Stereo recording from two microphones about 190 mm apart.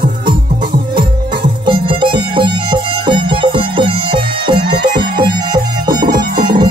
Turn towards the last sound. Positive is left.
turn(degrees=-25)  # may be behind; listen again after turning